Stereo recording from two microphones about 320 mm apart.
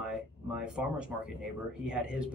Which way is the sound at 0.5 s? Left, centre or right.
Centre.